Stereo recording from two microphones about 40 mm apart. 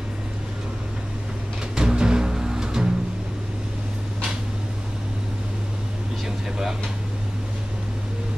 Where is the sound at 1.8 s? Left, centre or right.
Centre.